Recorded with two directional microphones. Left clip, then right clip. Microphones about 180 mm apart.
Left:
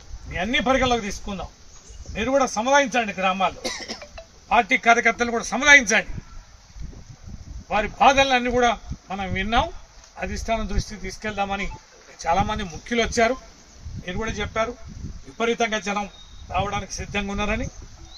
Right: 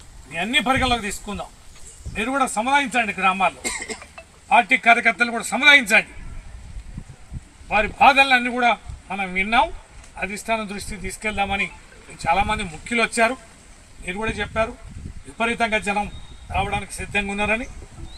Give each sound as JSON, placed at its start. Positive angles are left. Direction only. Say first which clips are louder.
{"t": 0.3, "sound": "a man's voice", "louder": "right 1 dB", "side_deg": 0}
{"t": 3.6, "sound": "speech", "louder": "right 2 dB", "side_deg": 35}
{"t": 4.5, "sound": "a man's voice", "louder": "right 2 dB", "side_deg": 0}
{"t": 7.7, "sound": "a man's voice", "louder": "right 2 dB", "side_deg": 0}